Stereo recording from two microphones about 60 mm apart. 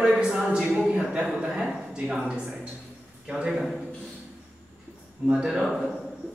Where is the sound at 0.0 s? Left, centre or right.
Centre.